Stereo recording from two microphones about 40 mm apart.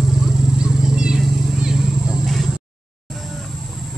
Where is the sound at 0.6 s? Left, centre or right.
Right.